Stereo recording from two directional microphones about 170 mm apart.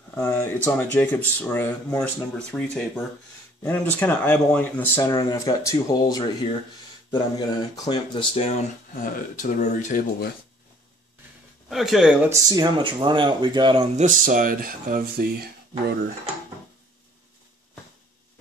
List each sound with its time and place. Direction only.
0.1 s speech: 10° left (ahead or behind); by 8.5 s 25° left (ahead or behind)
8.5 s speech: 55° left (ahead or behind)
11.7 s speech: centre (ahead or behind)
12.3 s speech: 25° right (ahead or behind)
13.9 s speech: 50° right (ahead or behind)